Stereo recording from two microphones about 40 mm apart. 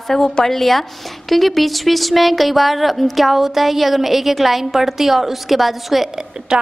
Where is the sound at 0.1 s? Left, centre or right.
Centre.